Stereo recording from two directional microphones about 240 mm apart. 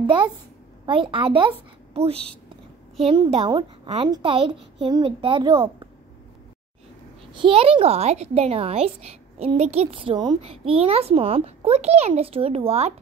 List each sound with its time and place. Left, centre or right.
0.8 s speech: right
7.3 s speech: right